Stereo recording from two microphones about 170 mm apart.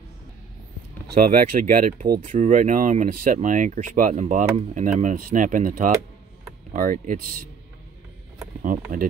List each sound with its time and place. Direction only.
1.1 s speech: 60° right (ahead or behind)